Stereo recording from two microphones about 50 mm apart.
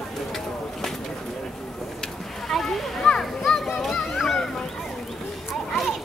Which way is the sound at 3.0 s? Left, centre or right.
Centre.